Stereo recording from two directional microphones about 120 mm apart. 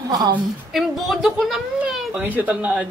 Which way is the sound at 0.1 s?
35° right (ahead or behind).